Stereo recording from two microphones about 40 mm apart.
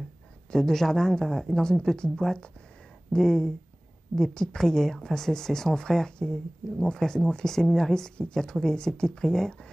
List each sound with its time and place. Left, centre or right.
0.6 s a woman's voice: centre